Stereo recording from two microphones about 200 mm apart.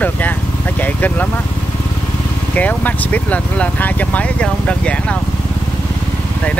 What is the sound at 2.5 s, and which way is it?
Speech, 10° left (ahead or behind).